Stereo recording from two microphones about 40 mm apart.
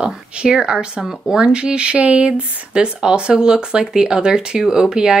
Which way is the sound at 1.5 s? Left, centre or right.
Right.